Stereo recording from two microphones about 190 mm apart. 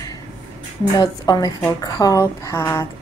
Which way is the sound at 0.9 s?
20° left (ahead or behind).